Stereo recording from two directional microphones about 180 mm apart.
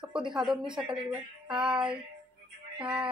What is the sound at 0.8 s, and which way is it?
Speech, 5° right (ahead or behind).